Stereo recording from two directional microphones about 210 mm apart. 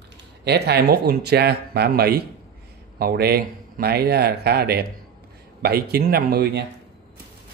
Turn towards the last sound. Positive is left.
turn(degrees=-50)  # may be behind; listen again after turning